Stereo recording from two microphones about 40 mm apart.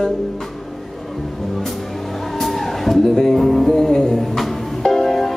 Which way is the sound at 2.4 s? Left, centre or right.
Centre.